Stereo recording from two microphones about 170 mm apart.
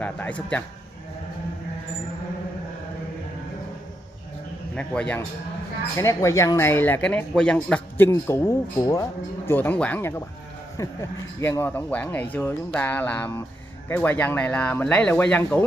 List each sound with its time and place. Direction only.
0.0 s speech: 10° left (ahead or behind)
4.7 s speech: 10° left (ahead or behind)